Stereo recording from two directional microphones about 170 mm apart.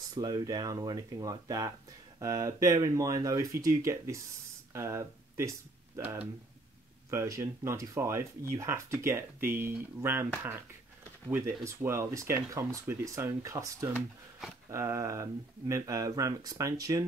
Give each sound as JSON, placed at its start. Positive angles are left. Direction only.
{"t": 0.1, "sound": "speech", "side_deg": -20}
{"t": 11.2, "sound": "speech", "side_deg": -15}